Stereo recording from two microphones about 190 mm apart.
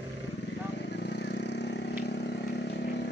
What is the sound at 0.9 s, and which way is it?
Vehicle, 65° left (ahead or behind).